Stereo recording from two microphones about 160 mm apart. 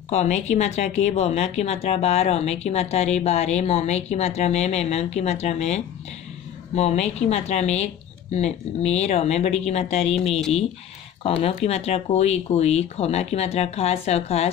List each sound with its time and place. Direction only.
0.1 s speech: 45° left (ahead or behind)
11.4 s speech: 40° left (ahead or behind)